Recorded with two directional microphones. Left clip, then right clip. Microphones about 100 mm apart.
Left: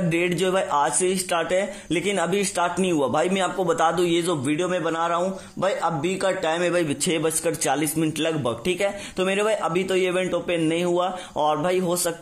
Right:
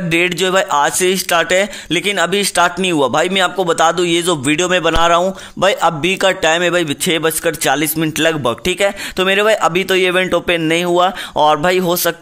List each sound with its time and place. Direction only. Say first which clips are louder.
0.1 s speech: right 10 dB; 10° right (ahead or behind)